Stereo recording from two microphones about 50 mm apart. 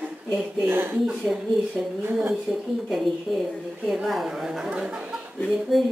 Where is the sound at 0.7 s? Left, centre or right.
Right.